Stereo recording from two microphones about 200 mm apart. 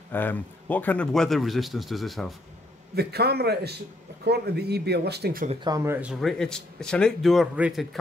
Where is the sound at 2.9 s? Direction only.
55° right (ahead or behind).